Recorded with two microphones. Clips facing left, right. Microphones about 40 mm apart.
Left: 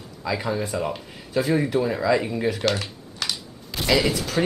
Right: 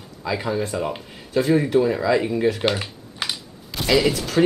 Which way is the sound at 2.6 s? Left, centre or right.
Right.